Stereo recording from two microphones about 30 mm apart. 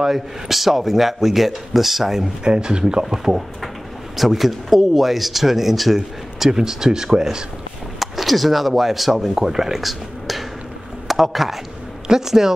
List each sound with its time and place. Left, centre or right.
0.0 s speech: centre
2.4 s speech: right; by 6.5 s centre
6.5 s speech: centre
8.0 s speech: centre
9.8 s a sound: centre
11.1 s a man's voice: centre